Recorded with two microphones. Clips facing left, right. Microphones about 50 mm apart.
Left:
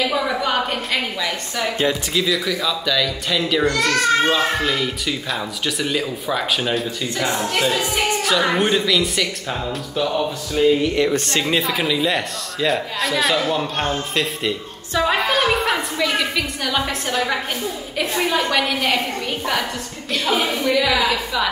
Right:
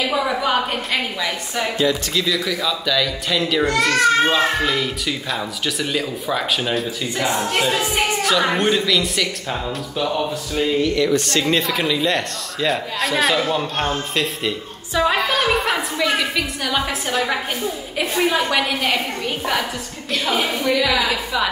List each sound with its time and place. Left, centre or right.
0.0 s a woman's voice: centre
11.0 s speech: left
11.4 s a child's voice: centre